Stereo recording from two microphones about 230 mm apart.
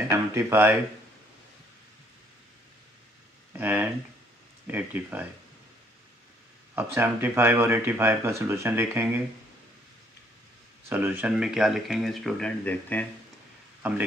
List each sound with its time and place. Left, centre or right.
0.1 s speech: centre
3.5 s speech: centre
6.7 s speech: centre
10.9 s speech: centre